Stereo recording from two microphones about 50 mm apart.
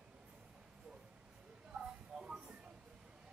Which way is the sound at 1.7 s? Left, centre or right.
Centre.